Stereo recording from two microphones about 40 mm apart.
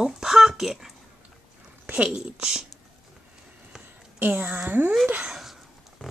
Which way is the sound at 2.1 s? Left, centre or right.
Centre.